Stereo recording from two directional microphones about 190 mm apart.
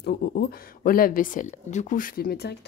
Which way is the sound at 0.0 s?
60° left (ahead or behind).